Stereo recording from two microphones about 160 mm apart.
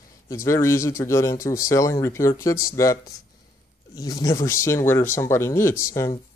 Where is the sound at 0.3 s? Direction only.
20° left (ahead or behind).